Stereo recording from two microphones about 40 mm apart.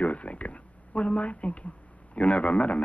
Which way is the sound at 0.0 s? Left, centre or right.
Left.